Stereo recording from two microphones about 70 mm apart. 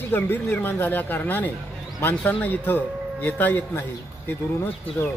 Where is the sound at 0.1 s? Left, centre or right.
Left.